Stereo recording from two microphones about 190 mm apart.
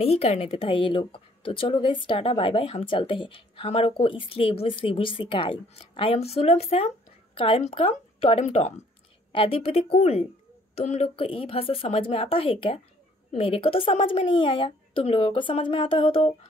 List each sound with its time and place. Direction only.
0.0 s a woman's voice: 35° left (ahead or behind)